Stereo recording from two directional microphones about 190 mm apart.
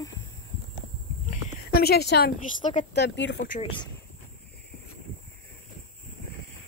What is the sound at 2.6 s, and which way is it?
Speech, 30° left (ahead or behind).